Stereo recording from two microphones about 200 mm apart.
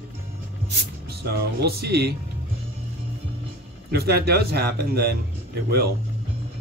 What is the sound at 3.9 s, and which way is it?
Speech, 50° right (ahead or behind).